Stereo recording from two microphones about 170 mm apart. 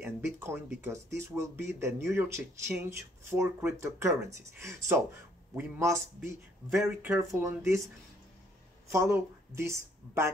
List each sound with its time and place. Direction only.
0.0 s speech: 15° right (ahead or behind)
8.8 s speech: 15° right (ahead or behind)